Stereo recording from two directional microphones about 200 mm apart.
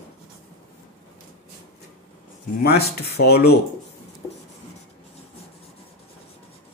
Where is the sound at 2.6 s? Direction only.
55° left (ahead or behind).